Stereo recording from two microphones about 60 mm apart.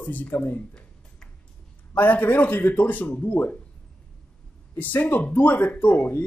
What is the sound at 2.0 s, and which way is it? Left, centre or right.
Speech, left.